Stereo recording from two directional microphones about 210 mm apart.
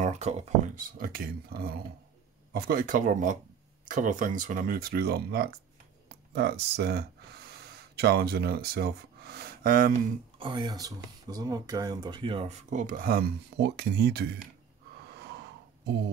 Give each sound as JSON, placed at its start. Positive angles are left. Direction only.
{"t": 0.0, "sound": "speech", "side_deg": -30}
{"t": 10.4, "sound": "speech", "side_deg": -20}